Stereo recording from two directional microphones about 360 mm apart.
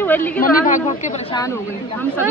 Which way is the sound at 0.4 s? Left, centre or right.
Left.